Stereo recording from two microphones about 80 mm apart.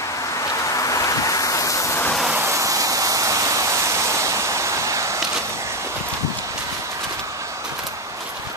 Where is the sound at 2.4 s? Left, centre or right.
Right.